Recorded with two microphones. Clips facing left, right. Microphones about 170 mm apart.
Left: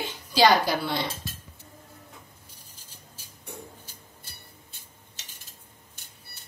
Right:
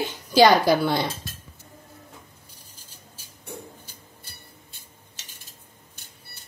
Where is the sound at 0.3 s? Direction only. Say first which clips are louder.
Right 5 dB; 50° right (ahead or behind).